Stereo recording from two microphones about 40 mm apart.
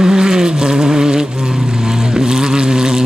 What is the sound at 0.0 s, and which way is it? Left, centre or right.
Vehicle, centre.